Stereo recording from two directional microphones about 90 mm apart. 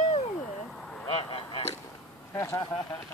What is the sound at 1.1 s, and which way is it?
Honk, 85° left.